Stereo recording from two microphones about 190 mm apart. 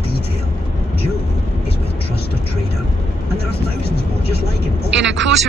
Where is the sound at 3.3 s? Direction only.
55° left (ahead or behind).